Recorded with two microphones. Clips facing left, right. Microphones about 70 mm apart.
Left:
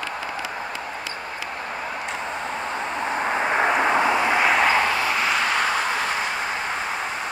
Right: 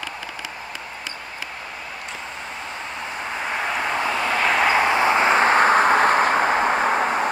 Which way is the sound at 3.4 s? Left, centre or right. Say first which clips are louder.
Left 4 dB; left.